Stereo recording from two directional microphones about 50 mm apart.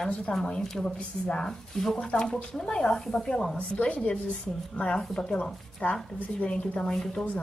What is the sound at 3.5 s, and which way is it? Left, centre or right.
A woman's voice, left.